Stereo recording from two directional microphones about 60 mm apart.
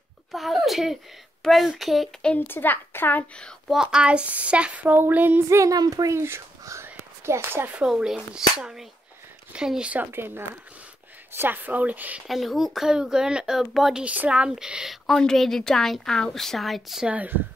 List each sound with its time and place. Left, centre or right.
0.3 s a sound: centre
1.4 s a woman's voice: centre
2.3 s speech: left
3.6 s speech: centre; by 5.4 s right
5.5 s speech: right
6.1 s speech: right
6.6 s whispering: right
7.9 s speech: centre
10.1 s speech: right
12.3 s speech: centre
14.0 s speech: right
14.5 s speech: centre
15.0 s a woman's voice: centre
17.0 s speech: right